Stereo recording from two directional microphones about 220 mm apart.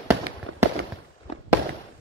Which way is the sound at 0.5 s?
60° right (ahead or behind).